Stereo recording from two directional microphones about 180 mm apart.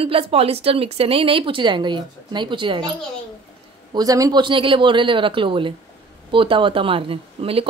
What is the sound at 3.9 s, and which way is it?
A woman's voice, 20° right (ahead or behind).